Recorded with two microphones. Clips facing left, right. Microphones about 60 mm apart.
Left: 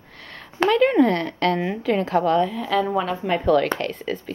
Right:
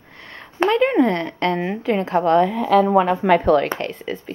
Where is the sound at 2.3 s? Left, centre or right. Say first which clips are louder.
Right 5 dB; right.